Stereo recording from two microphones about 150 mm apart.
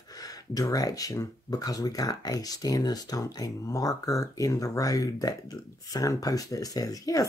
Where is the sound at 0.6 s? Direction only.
25° left (ahead or behind).